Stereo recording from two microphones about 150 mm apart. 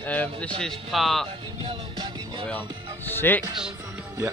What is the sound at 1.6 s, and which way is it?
Music, 35° right (ahead or behind).